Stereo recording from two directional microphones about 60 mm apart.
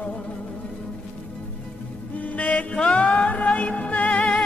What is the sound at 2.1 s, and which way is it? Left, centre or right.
Music, left.